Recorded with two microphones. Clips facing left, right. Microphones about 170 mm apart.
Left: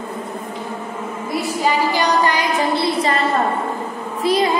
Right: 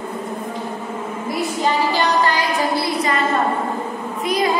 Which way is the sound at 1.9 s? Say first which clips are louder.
Left 1 dB; 15° left (ahead or behind).